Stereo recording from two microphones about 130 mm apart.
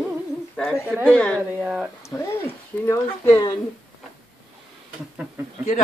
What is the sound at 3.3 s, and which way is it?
Speech, 40° left (ahead or behind).